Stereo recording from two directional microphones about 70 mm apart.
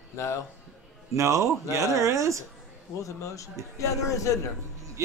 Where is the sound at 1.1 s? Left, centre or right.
Right.